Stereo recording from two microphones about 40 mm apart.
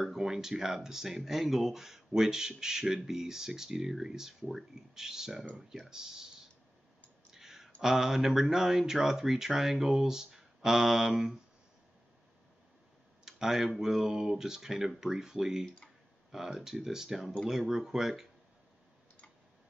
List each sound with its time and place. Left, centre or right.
0.0 s speech: centre
7.2 s clicking: centre
7.8 s speech: centre
13.2 s speech: centre
15.6 s speech: left
16.3 s speech: centre